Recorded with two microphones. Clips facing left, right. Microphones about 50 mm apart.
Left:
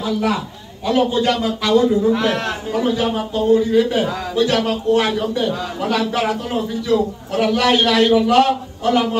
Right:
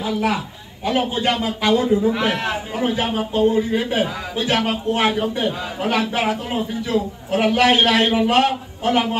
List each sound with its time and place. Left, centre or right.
0.0 s a man's voice: right